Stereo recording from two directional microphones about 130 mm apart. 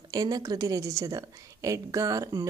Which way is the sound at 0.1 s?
30° right (ahead or behind).